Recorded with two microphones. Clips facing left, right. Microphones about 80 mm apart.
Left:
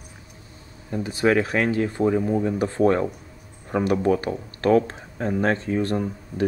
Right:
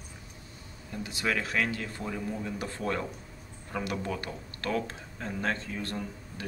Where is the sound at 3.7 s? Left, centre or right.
Left.